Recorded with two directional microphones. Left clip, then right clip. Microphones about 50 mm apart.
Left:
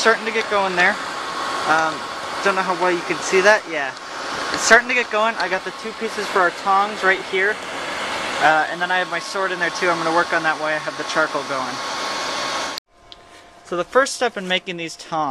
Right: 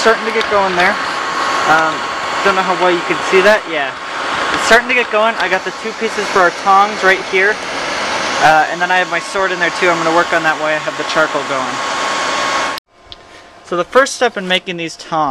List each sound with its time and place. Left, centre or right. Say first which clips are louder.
0.0 s speech: right 5 dB; centre
0.9 s a sound: right 9 dB; centre
1.9 s vehicle: right 8 dB; centre
2.4 s speech: right 6 dB; centre
4.2 s a sound: right 8 dB; centre
4.8 s speech: right 6 dB; centre
6.0 s speech: right 6 dB; centre
7.8 s vehicle: right 8 dB; centre
8.5 s speech: right 6 dB; centre
9.9 s speech: right 6 dB; centre
10.3 s speech: right 6 dB; centre
11.2 s hair dryer: right 6 dB; right
13.7 s speech: right 6 dB; centre